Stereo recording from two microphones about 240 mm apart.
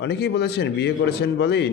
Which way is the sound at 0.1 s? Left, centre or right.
Left.